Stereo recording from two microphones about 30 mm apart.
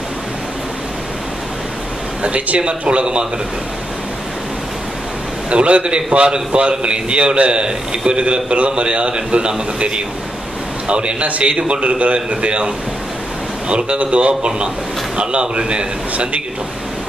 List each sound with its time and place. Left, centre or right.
2.2 s speech: right
2.8 s a man's voice: right
5.5 s a man's voice: right
11.8 s a man's voice: right